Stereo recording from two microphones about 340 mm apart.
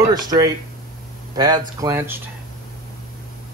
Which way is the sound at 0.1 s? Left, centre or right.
Centre.